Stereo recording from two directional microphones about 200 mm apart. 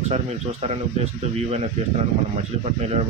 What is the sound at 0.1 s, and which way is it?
Speech, 30° right (ahead or behind).